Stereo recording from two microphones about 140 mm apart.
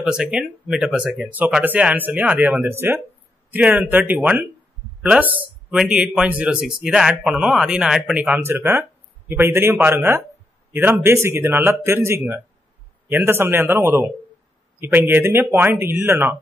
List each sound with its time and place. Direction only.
0.0 s speech: 5° right (ahead or behind)